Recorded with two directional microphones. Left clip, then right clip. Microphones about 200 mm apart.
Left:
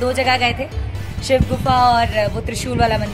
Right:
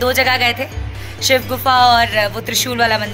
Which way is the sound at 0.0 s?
5° left (ahead or behind).